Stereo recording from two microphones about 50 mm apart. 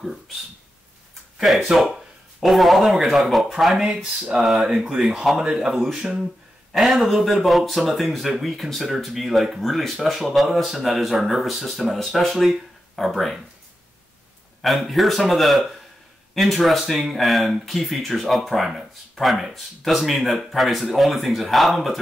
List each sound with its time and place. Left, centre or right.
1.7 s speech: centre
6.7 s speech: centre
14.6 s speech: centre